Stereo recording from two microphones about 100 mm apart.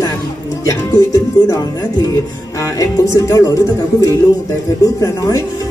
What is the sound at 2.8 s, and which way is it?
Speech, 35° left (ahead or behind).